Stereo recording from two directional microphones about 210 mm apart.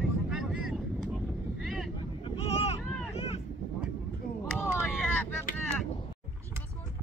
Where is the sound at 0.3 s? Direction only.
Centre (ahead or behind).